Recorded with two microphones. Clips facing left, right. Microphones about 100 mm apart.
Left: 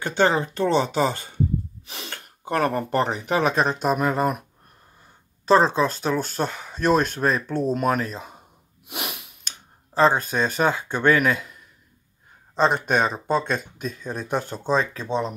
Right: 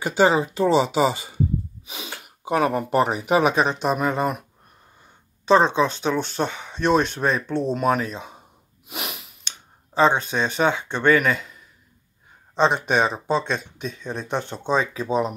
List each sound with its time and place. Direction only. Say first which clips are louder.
0.0 s speech: right 2 dB; 10° right (ahead or behind)
8.8 s sniff: even; centre (ahead or behind)
9.9 s speech: even; centre (ahead or behind)